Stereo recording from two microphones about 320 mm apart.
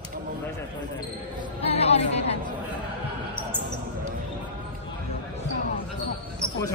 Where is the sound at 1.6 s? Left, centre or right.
Centre.